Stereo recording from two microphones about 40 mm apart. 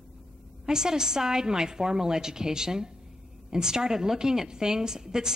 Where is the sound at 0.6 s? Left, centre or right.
Centre.